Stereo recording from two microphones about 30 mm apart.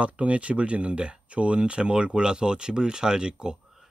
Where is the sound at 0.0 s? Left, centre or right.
Right.